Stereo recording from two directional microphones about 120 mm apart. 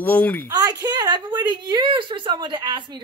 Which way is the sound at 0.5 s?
35° right (ahead or behind).